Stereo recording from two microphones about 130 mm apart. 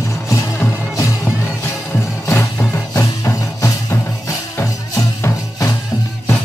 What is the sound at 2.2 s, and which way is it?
Music, 25° left (ahead or behind).